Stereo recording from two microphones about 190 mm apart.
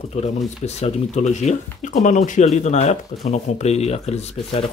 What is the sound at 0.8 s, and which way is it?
Speech, 35° left (ahead or behind).